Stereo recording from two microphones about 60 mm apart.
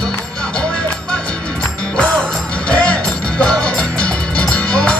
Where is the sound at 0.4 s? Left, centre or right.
Centre.